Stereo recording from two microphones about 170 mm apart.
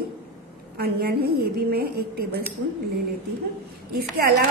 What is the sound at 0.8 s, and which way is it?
A woman's voice, 65° right (ahead or behind).